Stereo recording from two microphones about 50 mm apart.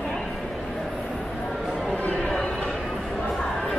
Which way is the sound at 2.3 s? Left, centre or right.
Centre.